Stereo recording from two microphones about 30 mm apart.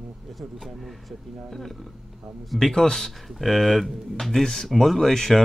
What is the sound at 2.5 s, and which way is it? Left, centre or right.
Speech, centre.